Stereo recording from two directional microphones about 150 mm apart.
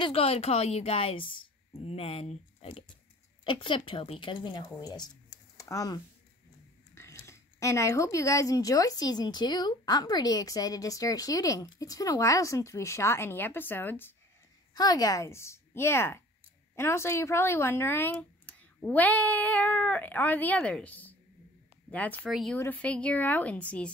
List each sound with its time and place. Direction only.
0.0 s a woman's voice: 40° left (ahead or behind); by 5.9 s 25° left (ahead or behind)
7.0 s speech: 20° left (ahead or behind)
14.7 s speech: 25° left (ahead or behind); by 23.9 s 10° left (ahead or behind)